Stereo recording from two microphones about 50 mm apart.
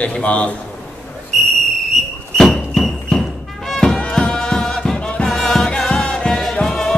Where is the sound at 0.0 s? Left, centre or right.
Left.